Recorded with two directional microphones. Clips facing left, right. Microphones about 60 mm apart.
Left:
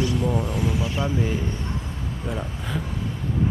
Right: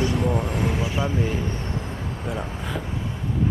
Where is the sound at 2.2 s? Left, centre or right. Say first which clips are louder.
Even; centre.